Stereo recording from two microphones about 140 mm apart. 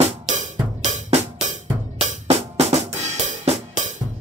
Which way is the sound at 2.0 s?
50° right (ahead or behind).